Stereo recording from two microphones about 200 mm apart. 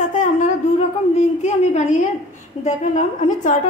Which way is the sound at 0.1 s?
35° left (ahead or behind).